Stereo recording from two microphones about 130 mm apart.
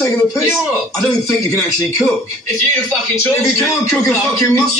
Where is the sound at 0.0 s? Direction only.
25° left (ahead or behind).